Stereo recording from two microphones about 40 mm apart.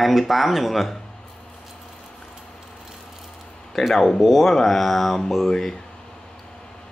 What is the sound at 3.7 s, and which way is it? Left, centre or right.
Speech, centre.